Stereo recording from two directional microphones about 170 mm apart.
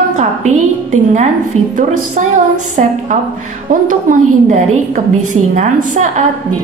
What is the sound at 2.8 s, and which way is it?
A woman's voice, 45° right (ahead or behind).